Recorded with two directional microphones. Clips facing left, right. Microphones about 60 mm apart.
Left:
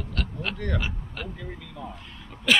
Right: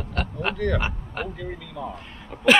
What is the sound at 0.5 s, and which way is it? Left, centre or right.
Speech, right.